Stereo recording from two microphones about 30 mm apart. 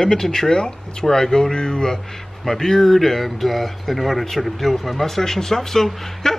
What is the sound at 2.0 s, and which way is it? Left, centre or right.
Speech, centre.